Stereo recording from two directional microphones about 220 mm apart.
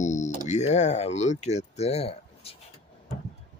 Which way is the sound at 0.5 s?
30° left (ahead or behind).